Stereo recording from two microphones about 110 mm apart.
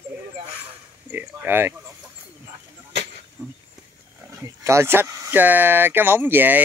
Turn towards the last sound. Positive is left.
turn(degrees=-15)  # may be behind; listen again after turning